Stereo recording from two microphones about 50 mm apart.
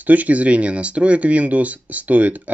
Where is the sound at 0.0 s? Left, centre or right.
Right.